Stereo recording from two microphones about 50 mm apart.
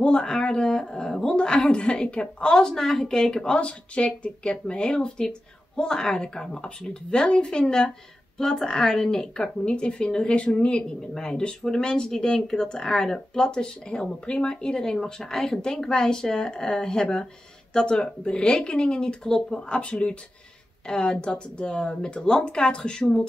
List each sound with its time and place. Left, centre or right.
0.0 s a woman's voice: centre